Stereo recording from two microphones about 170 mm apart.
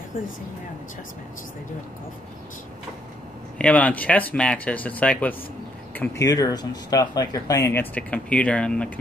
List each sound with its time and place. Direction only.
3.5 s speech: 10° left (ahead or behind)